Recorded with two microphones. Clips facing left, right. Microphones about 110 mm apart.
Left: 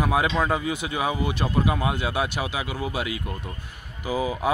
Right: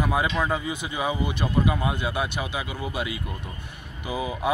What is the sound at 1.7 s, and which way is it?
Speech, 5° left (ahead or behind).